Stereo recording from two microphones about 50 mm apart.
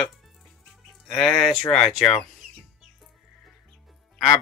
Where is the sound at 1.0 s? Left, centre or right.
Centre.